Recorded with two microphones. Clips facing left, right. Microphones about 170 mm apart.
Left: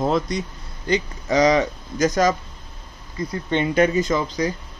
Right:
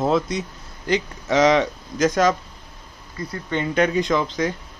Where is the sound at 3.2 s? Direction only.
20° left (ahead or behind).